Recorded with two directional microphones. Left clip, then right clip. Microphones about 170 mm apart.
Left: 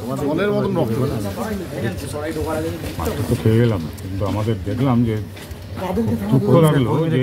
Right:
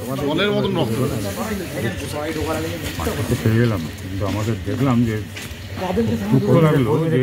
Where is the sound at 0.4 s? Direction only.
65° left (ahead or behind).